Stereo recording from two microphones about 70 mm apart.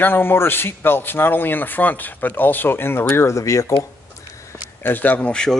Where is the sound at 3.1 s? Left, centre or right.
Left.